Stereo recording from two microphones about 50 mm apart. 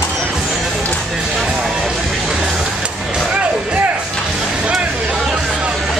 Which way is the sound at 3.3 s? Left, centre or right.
Right.